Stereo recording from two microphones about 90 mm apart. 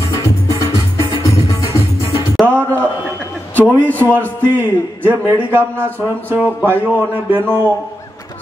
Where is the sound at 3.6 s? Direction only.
20° left (ahead or behind).